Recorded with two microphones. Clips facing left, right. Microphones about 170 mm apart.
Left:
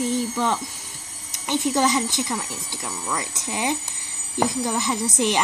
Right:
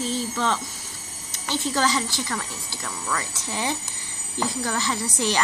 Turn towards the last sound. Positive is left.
turn(degrees=20)  # may be behind; listen again after turning